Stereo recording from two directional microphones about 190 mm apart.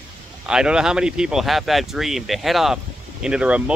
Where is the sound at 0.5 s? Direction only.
5° right (ahead or behind).